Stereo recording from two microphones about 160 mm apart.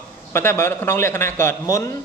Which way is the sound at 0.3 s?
15° left (ahead or behind).